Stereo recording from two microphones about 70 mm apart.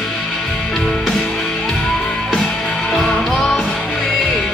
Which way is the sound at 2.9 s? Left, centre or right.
Centre.